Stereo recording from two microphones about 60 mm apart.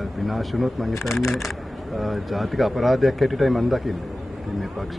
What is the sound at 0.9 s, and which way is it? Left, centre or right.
Speech, left.